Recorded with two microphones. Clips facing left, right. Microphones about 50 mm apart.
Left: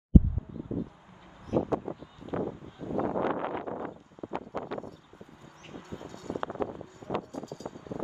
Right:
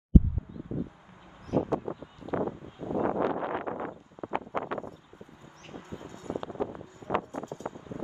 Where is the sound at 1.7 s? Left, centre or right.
Right.